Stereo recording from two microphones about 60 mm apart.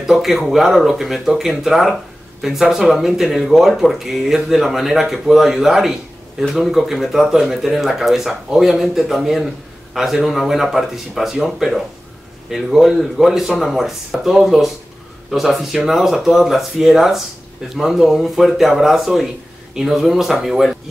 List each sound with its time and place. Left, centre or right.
0.0 s speech: centre